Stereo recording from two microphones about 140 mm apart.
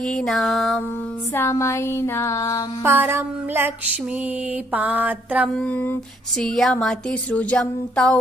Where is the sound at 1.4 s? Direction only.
20° left (ahead or behind).